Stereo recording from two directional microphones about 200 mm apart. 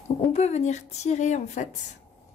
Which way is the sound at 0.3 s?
30° left (ahead or behind).